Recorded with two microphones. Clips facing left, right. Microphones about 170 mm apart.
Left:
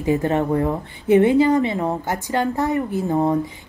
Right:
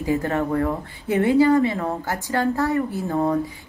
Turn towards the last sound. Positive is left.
turn(degrees=20)  # may be behind; listen again after turning